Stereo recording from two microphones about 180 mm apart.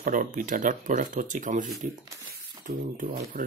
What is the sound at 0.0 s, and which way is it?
Speech, 50° right (ahead or behind).